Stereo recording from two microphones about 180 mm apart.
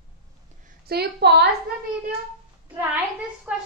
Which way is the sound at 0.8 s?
65° right (ahead or behind).